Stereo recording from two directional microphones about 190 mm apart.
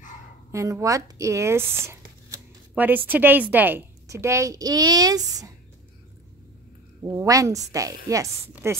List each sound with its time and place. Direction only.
0.5 s a child's voice: 15° right (ahead or behind)
7.0 s a child's voice: 15° right (ahead or behind)